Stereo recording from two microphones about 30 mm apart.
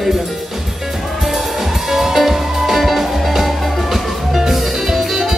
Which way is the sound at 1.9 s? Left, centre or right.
Centre.